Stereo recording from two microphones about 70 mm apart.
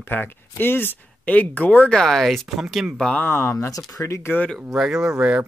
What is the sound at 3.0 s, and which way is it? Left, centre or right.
Speech, centre.